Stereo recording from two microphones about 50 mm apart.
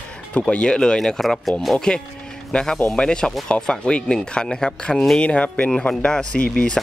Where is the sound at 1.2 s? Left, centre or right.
Centre.